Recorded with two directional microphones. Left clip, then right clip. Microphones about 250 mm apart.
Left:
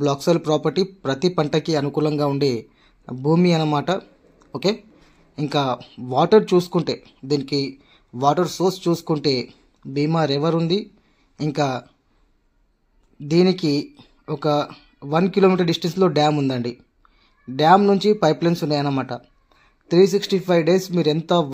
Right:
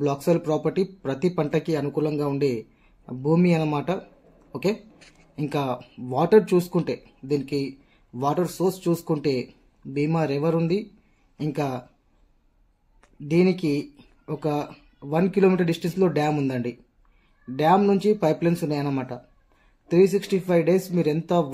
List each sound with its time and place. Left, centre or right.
0.0 s speech: centre
13.3 s speech: centre